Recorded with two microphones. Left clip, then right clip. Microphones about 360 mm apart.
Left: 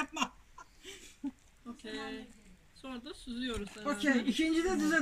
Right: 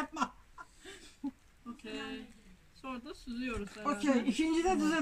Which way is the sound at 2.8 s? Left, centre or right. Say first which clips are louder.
Right 1 dB; centre.